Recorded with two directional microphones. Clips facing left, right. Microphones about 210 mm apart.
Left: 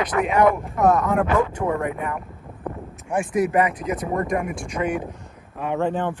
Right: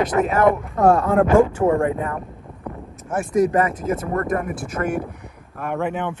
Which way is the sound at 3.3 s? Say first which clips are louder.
Right 3 dB; 45° right (ahead or behind).